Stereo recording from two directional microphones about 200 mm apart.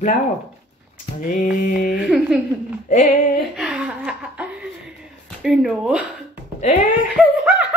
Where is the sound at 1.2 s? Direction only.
40° left (ahead or behind).